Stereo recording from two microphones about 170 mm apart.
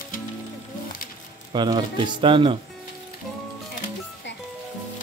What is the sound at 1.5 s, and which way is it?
Speech, 25° right (ahead or behind).